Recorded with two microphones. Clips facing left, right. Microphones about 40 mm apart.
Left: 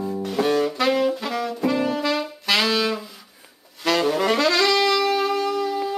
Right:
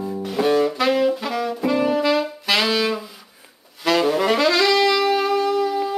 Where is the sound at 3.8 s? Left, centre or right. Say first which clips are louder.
Right 2 dB; centre.